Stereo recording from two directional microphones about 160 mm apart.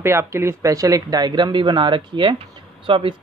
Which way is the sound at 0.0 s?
15° right (ahead or behind).